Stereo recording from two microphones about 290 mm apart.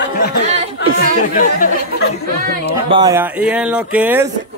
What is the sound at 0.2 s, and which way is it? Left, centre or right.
Speech, left.